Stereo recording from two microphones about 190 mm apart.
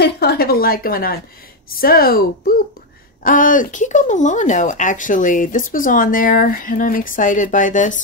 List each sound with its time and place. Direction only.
0.0 s a woman's voice: 55° left (ahead or behind)